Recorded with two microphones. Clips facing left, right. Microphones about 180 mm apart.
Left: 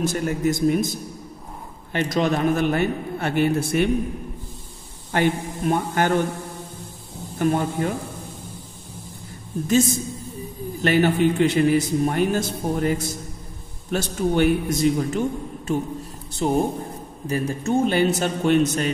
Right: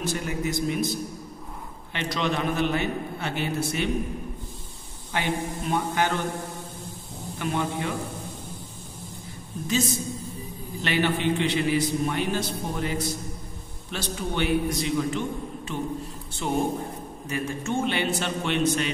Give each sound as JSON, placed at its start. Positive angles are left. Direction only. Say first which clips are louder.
{"t": 0.0, "sound": "a man's voice", "louder": "left 6 dB", "side_deg": 45}
{"t": 5.1, "sound": "a man's voice", "louder": "left 6 dB", "side_deg": 50}
{"t": 7.3, "sound": "a man's voice", "louder": "left 6 dB", "side_deg": 45}
{"t": 10.8, "sound": "a man's voice", "louder": "left 7 dB", "side_deg": 45}